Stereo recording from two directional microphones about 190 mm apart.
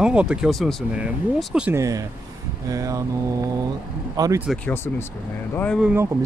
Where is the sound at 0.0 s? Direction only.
5° right (ahead or behind).